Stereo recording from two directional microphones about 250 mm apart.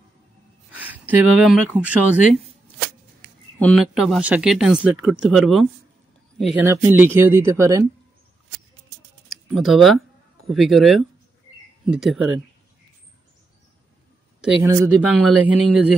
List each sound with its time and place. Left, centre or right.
1.1 s a man's voice: centre
3.5 s a man's voice: centre
9.3 s a man's voice: centre
14.4 s a man's voice: centre